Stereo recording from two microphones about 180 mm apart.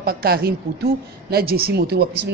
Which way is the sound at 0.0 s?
55° right (ahead or behind).